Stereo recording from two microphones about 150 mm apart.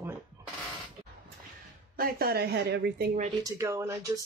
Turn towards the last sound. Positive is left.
turn(degrees=-20)  # may be behind; listen again after turning